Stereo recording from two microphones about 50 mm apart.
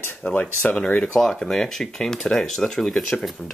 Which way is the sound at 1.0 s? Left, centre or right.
Centre.